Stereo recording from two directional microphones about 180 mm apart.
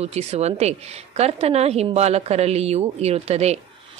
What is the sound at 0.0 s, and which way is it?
A woman's voice, 35° right (ahead or behind).